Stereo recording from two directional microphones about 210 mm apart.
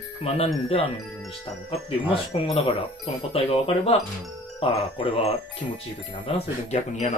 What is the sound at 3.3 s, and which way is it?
Speech, 30° left (ahead or behind).